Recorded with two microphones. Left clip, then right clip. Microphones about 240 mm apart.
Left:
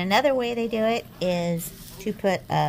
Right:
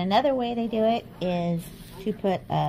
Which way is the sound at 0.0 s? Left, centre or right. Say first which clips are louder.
Left 2 dB; left.